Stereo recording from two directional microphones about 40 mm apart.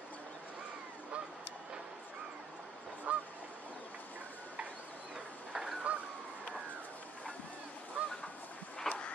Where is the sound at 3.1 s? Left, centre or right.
Right.